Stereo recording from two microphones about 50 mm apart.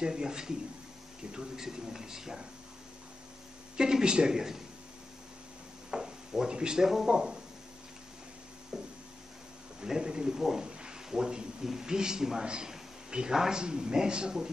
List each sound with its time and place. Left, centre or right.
0.0 s speech: centre
3.7 s speech: centre
5.9 s speech: centre
8.7 s a sound: centre
9.8 s a man's voice: centre